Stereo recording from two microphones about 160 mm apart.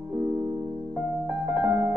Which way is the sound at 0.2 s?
20° right (ahead or behind).